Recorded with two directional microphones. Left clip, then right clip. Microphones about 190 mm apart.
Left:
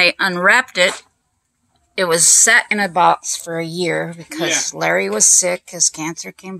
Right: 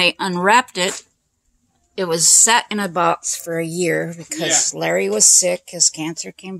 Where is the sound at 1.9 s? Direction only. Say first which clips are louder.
Left 2 dB; 15° right (ahead or behind).